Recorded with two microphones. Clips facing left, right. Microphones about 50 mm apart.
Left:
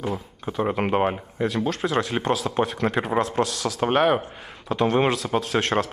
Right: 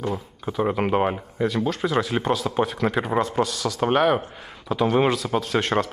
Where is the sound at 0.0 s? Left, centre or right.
Centre.